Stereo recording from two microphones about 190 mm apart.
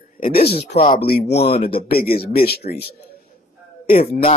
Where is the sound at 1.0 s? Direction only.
55° left (ahead or behind).